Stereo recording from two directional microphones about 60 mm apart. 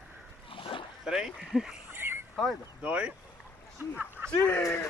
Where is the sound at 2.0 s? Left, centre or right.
Right.